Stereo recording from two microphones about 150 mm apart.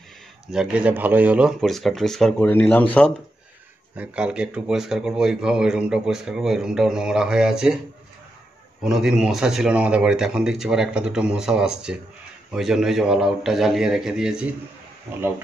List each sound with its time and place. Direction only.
0.5 s speech: 5° right (ahead or behind); by 3.1 s 10° left (ahead or behind)
3.9 s speech: 10° right (ahead or behind)
8.8 s speech: 5° right (ahead or behind)